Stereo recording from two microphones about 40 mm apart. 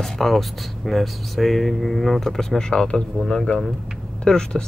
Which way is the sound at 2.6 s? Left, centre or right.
Centre.